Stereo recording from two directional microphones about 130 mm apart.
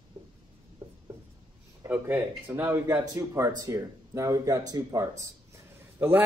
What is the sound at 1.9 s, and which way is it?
Speech, 10° right (ahead or behind).